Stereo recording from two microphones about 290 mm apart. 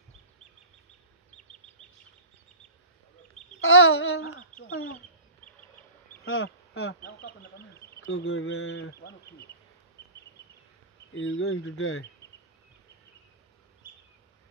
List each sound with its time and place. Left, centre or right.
3.6 s speech: left
6.2 s speech: left
7.0 s speech: left
11.1 s speech: left